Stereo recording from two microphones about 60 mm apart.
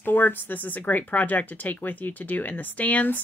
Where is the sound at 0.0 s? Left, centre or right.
Left.